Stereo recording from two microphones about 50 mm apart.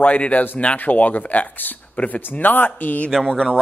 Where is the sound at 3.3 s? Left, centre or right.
Centre.